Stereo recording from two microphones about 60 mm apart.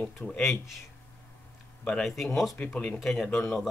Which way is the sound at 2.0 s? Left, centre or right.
Centre.